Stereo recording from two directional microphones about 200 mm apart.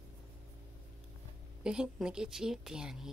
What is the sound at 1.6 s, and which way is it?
A woman's voice, 5° right (ahead or behind).